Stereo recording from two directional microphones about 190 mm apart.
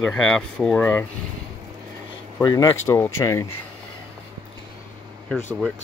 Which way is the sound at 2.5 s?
20° left (ahead or behind).